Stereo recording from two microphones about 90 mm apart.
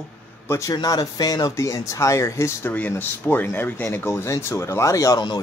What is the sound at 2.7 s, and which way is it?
A man's voice, 20° left (ahead or behind).